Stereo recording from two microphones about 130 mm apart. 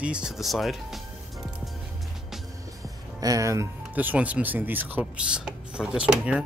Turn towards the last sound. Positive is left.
turn(degrees=-10)  # may be behind; listen again after turning